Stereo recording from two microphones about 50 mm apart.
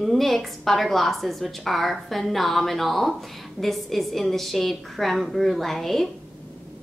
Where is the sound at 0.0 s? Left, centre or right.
Centre.